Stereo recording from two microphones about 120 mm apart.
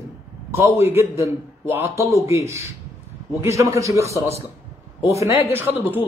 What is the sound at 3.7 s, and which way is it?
A man's voice, 25° right (ahead or behind).